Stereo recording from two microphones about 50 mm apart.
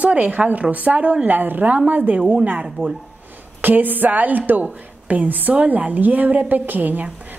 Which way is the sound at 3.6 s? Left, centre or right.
Right.